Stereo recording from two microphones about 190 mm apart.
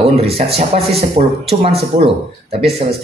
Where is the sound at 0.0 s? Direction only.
30° right (ahead or behind).